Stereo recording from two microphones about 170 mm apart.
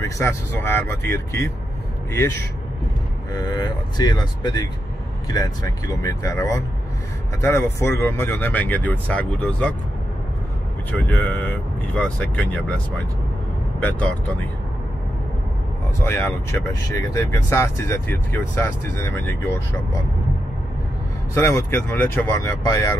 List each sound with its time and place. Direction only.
0.0 s speech: 15° left (ahead or behind)
10.9 s speech: 10° left (ahead or behind)
16.0 s speech: 15° left (ahead or behind)
21.4 s speech: 15° left (ahead or behind)